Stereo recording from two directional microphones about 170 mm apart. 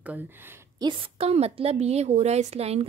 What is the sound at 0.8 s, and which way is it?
A woman's voice, 30° right (ahead or behind).